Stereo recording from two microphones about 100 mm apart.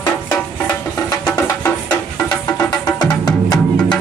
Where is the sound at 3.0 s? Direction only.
45° left (ahead or behind).